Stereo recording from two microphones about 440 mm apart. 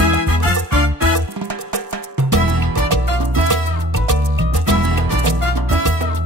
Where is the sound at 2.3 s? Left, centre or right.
Right.